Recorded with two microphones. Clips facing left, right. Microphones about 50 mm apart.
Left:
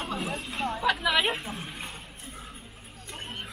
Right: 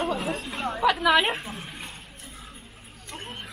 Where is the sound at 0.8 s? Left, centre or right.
Centre.